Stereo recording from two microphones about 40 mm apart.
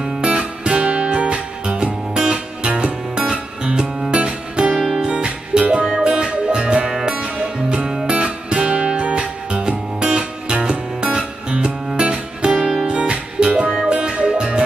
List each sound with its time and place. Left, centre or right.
0.2 s music: right
4.7 s music: centre
5.0 s music: right
12.5 s music: centre
12.8 s music: right